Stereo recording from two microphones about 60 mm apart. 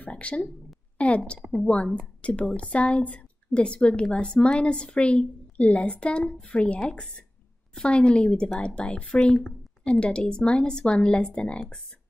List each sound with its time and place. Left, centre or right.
0.0 s a woman's voice: left